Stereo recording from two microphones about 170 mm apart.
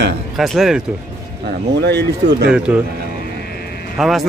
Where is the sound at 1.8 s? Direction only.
75° right (ahead or behind).